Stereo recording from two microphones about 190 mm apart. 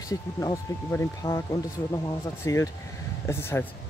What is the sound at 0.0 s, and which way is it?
Speech, 20° left (ahead or behind).